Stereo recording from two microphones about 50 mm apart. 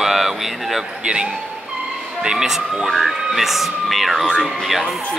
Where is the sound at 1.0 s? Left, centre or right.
Right.